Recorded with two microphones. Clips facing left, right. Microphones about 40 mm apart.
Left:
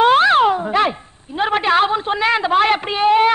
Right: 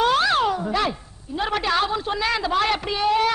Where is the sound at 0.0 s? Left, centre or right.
Left.